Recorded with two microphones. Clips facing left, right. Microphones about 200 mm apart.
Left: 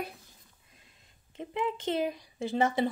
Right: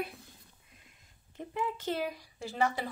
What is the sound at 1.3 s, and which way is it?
Speech, 20° left (ahead or behind).